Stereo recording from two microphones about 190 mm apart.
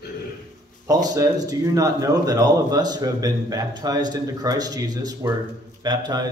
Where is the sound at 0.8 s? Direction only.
20° right (ahead or behind).